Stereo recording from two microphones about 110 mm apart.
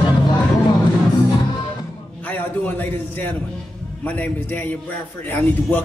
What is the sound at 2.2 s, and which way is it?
Speech, 15° left (ahead or behind).